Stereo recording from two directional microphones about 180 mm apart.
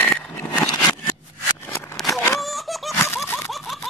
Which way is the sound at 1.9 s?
Centre (ahead or behind).